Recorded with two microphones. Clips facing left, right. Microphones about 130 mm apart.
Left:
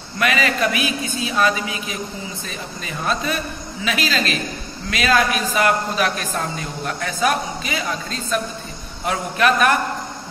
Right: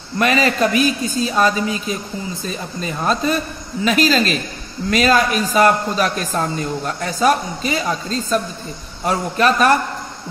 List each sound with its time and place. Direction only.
0.2 s a man's voice: 35° right (ahead or behind)